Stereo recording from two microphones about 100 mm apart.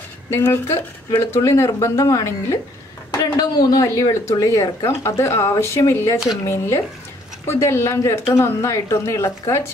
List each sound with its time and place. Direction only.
0.3 s speech: 30° left (ahead or behind)